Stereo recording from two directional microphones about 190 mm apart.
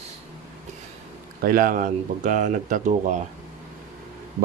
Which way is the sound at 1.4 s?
45° right (ahead or behind).